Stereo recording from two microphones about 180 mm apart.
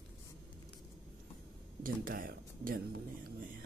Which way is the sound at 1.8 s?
50° right (ahead or behind).